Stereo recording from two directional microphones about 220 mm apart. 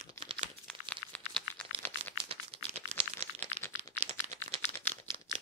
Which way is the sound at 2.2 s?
25° right (ahead or behind).